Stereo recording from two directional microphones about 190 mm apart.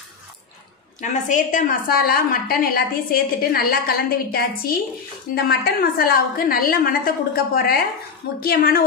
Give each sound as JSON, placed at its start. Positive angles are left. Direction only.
{"t": 1.0, "sound": "a woman's voice", "side_deg": 40}